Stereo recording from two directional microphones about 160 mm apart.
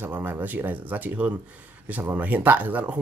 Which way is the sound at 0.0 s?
10° right (ahead or behind).